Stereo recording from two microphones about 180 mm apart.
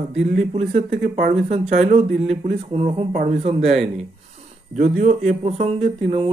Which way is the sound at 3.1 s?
45° right (ahead or behind).